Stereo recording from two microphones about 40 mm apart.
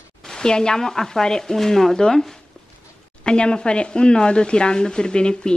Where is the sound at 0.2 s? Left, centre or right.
Centre.